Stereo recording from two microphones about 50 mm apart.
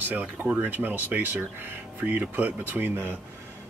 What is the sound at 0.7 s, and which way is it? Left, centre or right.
Speech, right.